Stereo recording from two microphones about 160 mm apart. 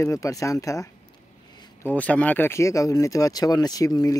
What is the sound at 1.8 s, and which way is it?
Speech, 10° left (ahead or behind).